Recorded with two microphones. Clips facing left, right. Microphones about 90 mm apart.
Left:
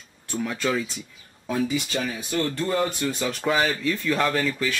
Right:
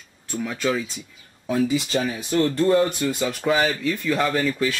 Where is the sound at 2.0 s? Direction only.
Centre (ahead or behind).